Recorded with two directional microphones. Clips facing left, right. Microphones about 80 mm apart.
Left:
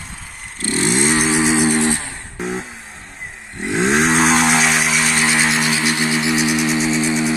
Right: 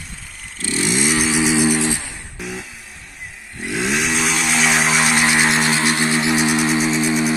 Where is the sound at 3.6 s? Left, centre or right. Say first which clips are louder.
Left 4 dB; left.